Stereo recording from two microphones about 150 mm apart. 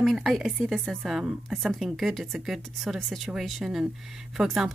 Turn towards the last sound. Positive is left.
turn(degrees=-5)  # may be behind; listen again after turning